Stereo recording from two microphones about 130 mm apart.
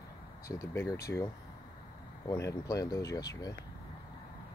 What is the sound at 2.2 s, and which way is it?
Speech, 25° left (ahead or behind).